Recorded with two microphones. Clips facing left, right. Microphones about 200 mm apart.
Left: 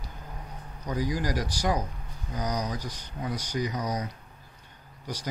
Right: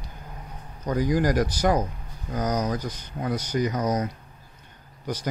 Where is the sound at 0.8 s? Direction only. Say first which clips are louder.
Right 7 dB; 55° right (ahead or behind).